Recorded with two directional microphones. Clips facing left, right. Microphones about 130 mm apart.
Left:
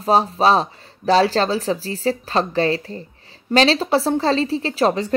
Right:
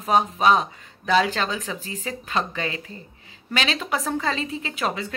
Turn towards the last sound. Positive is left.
turn(degrees=35)  # may be behind; listen again after turning